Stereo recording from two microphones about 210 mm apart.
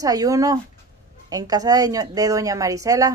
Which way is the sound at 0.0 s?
15° right (ahead or behind).